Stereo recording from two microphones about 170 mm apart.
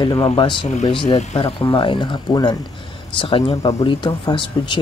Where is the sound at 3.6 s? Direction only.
20° left (ahead or behind).